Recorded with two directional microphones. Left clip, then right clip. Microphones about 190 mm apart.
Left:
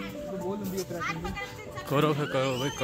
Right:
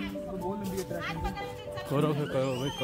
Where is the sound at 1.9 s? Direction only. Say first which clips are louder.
Left 4 dB; centre (ahead or behind).